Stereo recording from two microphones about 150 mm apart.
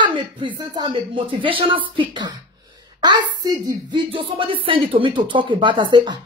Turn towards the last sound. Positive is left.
turn(degrees=-30)  # may be behind; listen again after turning